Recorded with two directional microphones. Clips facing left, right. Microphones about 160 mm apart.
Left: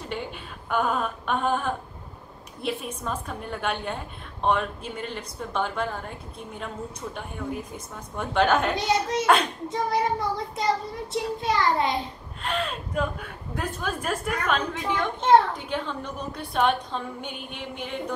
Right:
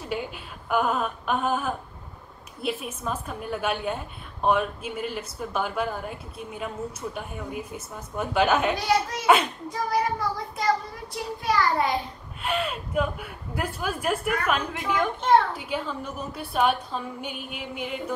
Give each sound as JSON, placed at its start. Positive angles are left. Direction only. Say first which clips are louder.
{"t": 0.7, "sound": "a woman's voice", "louder": "right 1 dB", "side_deg": -5}
{"t": 8.7, "sound": "child singing", "louder": "even", "side_deg": 20}
{"t": 9.2, "sound": "a woman's voice", "louder": "right 2 dB", "side_deg": -5}
{"t": 9.7, "sound": "child singing", "louder": "left 1 dB", "side_deg": 25}
{"t": 12.4, "sound": "a woman's voice", "louder": "right 1 dB", "side_deg": -5}